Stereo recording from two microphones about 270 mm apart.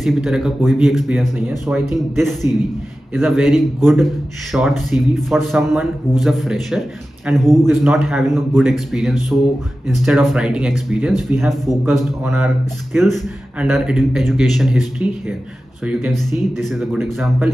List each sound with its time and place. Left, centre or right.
0.0 s a man's voice: centre
9.3 s music: centre
9.8 s a man's voice: centre